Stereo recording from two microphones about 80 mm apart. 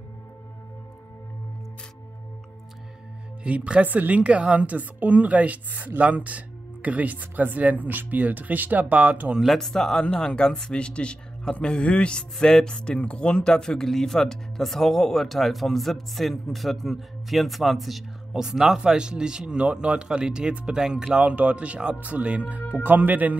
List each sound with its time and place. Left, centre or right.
3.4 s a woman's voice: centre
9.3 s a woman's voice: centre; by 23.3 s right